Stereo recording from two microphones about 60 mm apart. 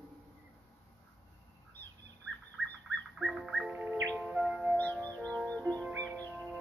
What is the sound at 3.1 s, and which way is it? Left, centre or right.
Bird, centre.